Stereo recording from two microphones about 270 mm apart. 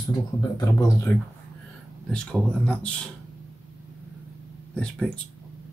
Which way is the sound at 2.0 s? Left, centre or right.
Centre.